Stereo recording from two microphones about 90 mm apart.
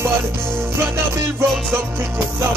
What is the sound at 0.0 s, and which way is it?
Music, 30° right (ahead or behind).